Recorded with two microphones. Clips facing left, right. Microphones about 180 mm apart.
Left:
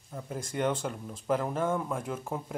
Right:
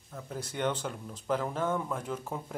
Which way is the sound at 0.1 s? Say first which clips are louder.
Left 3 dB; 10° left (ahead or behind).